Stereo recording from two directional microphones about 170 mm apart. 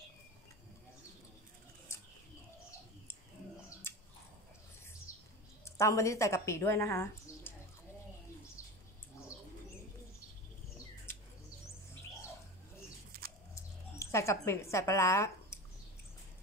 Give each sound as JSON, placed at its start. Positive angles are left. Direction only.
{"t": 3.9, "sound": "biting", "side_deg": 15}
{"t": 5.1, "sound": "bird", "side_deg": 20}
{"t": 5.7, "sound": "a woman's voice", "side_deg": 15}
{"t": 13.1, "sound": "bird", "side_deg": -65}
{"t": 13.9, "sound": "speech", "side_deg": 15}